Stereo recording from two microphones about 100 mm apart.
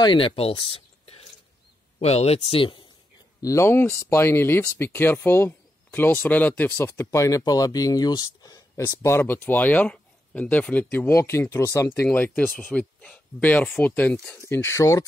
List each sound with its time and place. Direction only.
0.0 s speech: 55° left (ahead or behind); by 1.2 s 75° left (ahead or behind)
2.0 s speech: 90° left; by 2.8 s 65° left (ahead or behind)
3.4 s speech: 25° left (ahead or behind)
11.9 s speech: 20° left (ahead or behind)